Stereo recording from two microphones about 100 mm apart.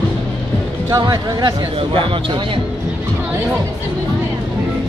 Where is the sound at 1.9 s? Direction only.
60° right (ahead or behind).